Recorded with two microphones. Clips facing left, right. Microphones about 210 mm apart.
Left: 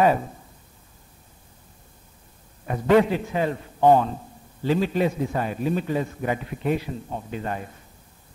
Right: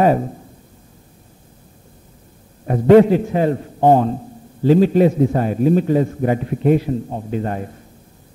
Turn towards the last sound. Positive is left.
turn(degrees=-40)  # may be behind; listen again after turning